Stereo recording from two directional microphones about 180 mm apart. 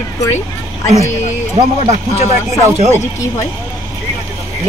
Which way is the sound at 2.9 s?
15° left (ahead or behind).